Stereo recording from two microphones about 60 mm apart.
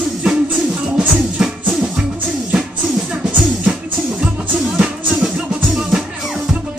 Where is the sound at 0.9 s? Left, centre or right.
Centre.